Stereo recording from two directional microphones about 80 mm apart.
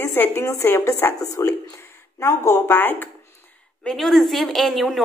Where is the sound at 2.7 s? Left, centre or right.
Left.